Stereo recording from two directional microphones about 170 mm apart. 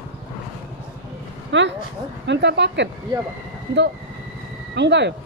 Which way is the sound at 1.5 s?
90° right.